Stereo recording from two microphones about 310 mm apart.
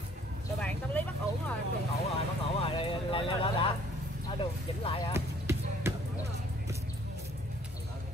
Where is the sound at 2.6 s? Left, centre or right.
Centre.